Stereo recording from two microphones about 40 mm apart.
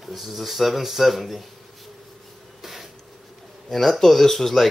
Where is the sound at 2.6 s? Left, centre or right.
Centre.